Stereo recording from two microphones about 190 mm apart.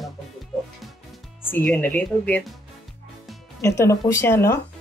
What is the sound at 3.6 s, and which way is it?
Speech, 15° left (ahead or behind).